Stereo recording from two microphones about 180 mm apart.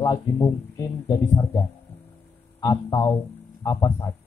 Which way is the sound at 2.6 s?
20° left (ahead or behind).